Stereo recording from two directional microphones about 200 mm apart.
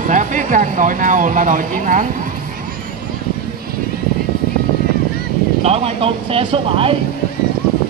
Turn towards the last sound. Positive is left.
turn(degrees=-30)  # may be behind; listen again after turning